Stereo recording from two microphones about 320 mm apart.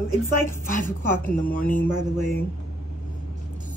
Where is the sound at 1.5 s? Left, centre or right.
Left.